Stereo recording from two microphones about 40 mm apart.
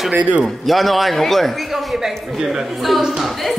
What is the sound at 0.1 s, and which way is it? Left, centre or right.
Speech, right.